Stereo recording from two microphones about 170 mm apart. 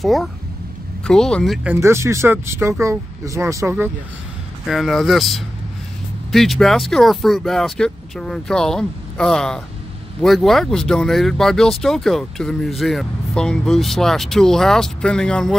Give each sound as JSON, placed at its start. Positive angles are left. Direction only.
{"t": 0.0, "sound": "speech", "side_deg": 0}
{"t": 4.6, "sound": "speech", "side_deg": 0}